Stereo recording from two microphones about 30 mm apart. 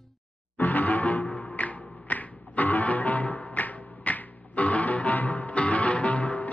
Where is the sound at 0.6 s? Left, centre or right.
Left.